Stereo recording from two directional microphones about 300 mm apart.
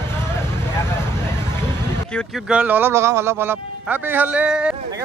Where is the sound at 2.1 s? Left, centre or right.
Centre.